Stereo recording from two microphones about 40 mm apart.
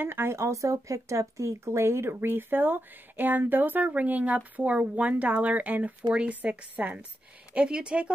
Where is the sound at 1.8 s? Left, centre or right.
Right.